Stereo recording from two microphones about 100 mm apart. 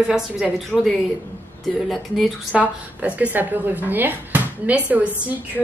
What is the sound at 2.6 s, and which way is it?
Speech, 15° right (ahead or behind).